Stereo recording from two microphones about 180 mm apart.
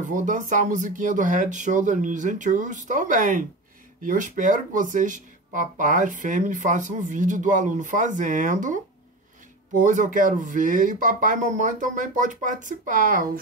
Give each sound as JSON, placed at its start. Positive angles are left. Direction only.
{"t": 0.0, "sound": "speech", "side_deg": -45}